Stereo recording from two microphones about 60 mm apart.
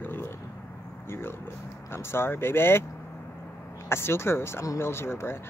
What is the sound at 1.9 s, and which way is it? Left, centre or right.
Speech, left.